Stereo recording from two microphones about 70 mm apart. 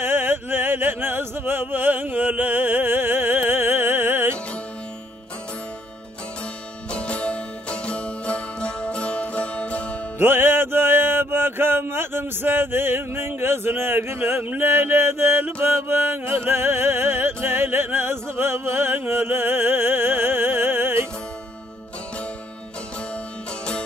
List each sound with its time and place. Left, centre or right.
0.0 s a sound: right
6.9 s music: centre
10.1 s music: right